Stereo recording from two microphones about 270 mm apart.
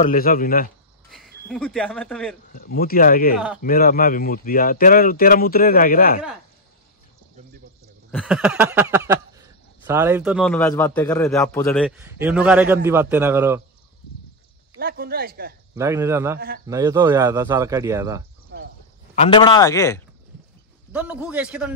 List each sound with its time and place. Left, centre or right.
0.0 s speech: left
1.1 s speech: centre
2.5 s speech: left
8.1 s a man's voice: centre
12.0 s a man's voice: centre
14.8 s speech: right
15.7 s a man's voice: centre
16.3 s speech: right
16.6 s a man's voice: centre
18.5 s a sound: right
19.1 s a man's voice: left
20.9 s a man's voice: centre